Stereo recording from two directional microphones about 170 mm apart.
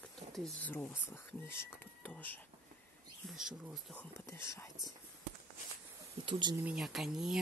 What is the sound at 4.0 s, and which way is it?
Speech, 15° left (ahead or behind).